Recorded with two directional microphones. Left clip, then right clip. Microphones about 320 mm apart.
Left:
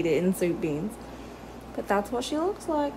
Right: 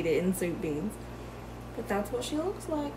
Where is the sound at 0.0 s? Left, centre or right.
Left.